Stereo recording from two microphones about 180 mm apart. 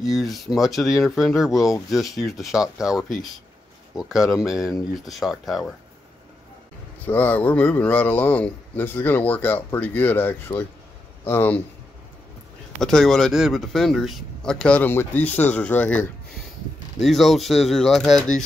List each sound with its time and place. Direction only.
0.0 s speech: centre (ahead or behind)
7.1 s speech: 10° left (ahead or behind)
12.8 s speech: centre (ahead or behind)